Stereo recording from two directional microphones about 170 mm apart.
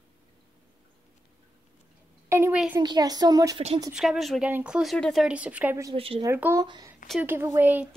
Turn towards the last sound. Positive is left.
turn(degrees=-10)  # may be behind; listen again after turning